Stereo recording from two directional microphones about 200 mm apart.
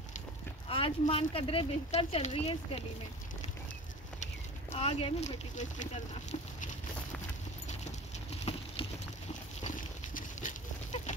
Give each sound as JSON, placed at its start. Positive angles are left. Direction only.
{"t": 0.7, "sound": "speech", "side_deg": 30}
{"t": 4.7, "sound": "speech", "side_deg": 30}
{"t": 8.5, "sound": "clip-clop", "side_deg": 30}
{"t": 9.6, "sound": "goat", "side_deg": 40}